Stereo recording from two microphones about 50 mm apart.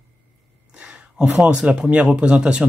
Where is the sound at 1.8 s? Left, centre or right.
Right.